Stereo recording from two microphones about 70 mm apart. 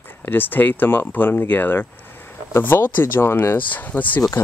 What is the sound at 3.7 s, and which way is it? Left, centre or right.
Speech, left.